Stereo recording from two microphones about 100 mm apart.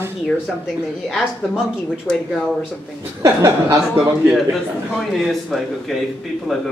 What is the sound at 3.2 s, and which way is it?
Speech, 30° right (ahead or behind).